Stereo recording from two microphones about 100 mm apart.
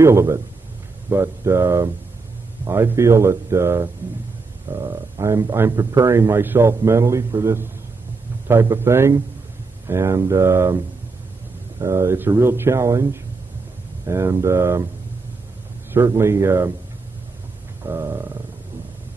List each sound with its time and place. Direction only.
0.0 s a man's voice: 30° right (ahead or behind)
11.8 s a man's voice: 30° right (ahead or behind)
15.9 s a man's voice: 25° right (ahead or behind)
17.8 s a man's voice: 25° right (ahead or behind)